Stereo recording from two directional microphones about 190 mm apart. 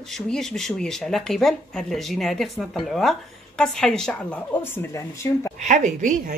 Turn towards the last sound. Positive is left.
turn(degrees=-40)  # may be behind; listen again after turning